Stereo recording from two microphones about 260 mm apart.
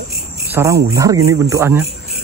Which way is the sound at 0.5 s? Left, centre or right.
Centre.